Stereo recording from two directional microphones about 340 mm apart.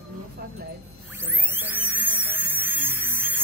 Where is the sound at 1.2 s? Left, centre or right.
Centre.